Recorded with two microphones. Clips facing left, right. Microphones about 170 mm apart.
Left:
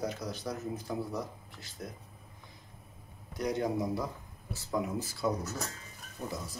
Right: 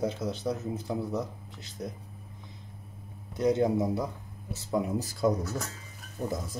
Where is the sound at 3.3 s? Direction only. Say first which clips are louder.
Right 7 dB; 25° right (ahead or behind).